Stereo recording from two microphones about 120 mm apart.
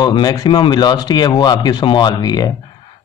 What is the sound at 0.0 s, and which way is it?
Speech, 35° left (ahead or behind).